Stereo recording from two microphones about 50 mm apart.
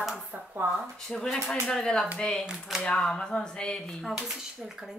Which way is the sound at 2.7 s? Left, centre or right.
Centre.